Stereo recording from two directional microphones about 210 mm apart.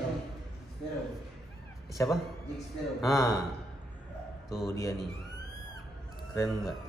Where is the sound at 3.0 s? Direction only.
15° left (ahead or behind).